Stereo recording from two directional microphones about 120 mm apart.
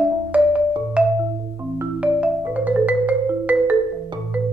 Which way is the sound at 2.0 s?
10° right (ahead or behind).